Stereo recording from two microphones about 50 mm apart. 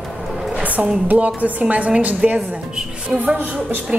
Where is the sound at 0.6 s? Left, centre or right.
Right.